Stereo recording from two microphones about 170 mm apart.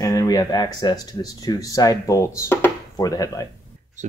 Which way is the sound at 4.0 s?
45° right (ahead or behind).